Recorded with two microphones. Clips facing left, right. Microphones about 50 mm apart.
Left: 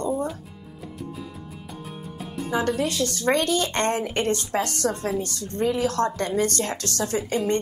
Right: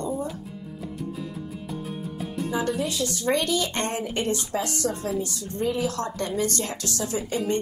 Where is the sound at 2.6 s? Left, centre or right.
Left.